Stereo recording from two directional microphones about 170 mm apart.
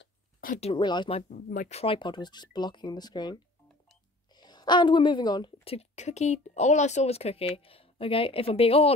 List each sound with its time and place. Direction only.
0.0 s a sound: 60° left (ahead or behind)
0.6 s speech: 30° left (ahead or behind)
1.3 s speech: 50° left (ahead or behind)
1.8 s speech: 30° left (ahead or behind)
4.4 s a woman's voice: 25° left (ahead or behind)